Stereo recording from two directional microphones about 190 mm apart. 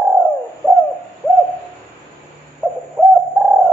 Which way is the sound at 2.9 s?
Centre (ahead or behind).